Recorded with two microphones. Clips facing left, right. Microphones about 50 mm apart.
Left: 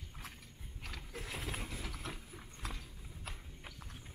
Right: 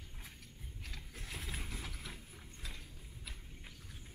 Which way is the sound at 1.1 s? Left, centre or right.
Centre.